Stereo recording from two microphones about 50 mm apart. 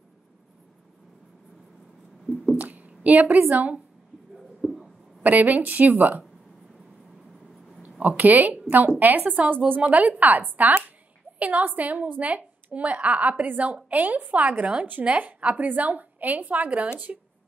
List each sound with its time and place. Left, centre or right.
2.5 s a sound: right
5.2 s a woman's voice: right
8.0 s a woman's voice: right